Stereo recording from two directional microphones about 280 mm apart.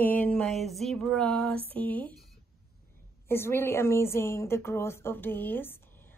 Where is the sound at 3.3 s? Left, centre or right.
Centre.